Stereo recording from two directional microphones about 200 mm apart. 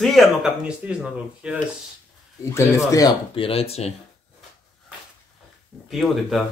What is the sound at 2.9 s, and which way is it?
Speech, 20° left (ahead or behind).